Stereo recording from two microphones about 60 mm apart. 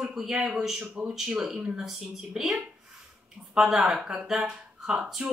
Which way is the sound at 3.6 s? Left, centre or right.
Centre.